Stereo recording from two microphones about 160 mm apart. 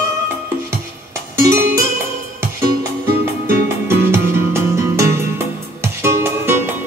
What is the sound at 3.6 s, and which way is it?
Music, 15° right (ahead or behind).